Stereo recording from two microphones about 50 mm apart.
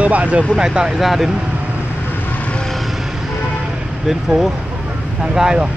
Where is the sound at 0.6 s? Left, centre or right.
Centre.